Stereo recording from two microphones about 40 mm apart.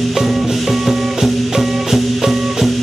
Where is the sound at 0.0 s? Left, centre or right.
Centre.